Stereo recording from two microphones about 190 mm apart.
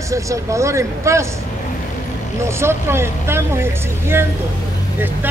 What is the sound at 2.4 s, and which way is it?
Speech, 15° right (ahead or behind).